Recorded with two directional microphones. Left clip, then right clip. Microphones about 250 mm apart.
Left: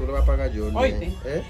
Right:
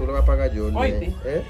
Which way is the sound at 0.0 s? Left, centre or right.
Centre.